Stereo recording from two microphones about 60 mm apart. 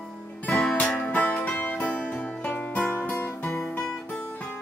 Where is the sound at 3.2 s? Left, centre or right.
Left.